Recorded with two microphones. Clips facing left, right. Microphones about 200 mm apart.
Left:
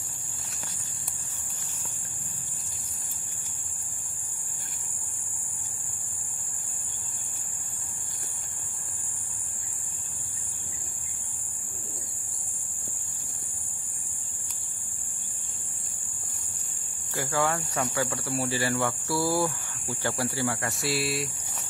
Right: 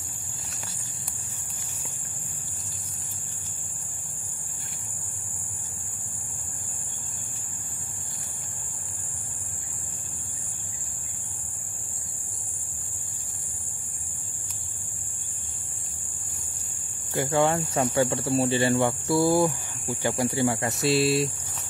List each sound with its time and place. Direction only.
17.1 s speech: 25° right (ahead or behind)